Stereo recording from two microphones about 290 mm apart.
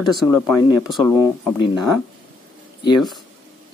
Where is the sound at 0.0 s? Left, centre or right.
Centre.